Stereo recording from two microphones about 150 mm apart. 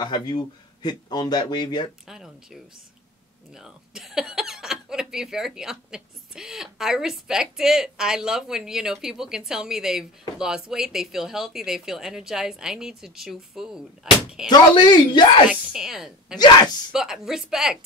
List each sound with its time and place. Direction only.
0.0 s speech: 25° left (ahead or behind)
2.0 s speech: 5° right (ahead or behind)
14.5 s speech: 30° left (ahead or behind)
15.5 s speech: 5° right (ahead or behind)